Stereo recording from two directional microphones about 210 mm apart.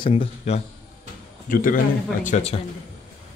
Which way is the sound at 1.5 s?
40° left (ahead or behind).